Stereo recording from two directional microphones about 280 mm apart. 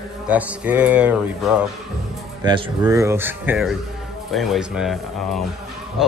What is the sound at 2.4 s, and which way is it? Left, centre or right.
A man's voice, centre.